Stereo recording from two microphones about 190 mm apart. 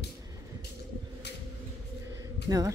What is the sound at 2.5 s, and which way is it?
Speech, 20° right (ahead or behind).